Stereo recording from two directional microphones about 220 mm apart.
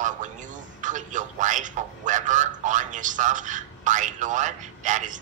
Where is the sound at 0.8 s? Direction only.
35° right (ahead or behind).